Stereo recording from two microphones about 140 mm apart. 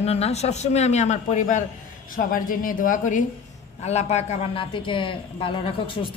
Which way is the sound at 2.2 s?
80° left.